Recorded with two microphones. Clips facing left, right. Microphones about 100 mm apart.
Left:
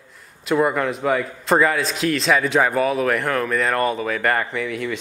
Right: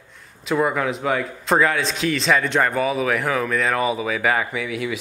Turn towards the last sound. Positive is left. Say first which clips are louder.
# left 1 dB
turn(degrees=-5)  # may be behind; listen again after turning